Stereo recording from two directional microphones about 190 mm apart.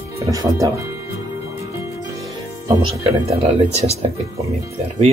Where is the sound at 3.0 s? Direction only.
30° right (ahead or behind).